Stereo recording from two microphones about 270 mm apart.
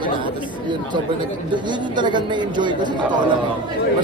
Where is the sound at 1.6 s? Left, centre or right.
Centre.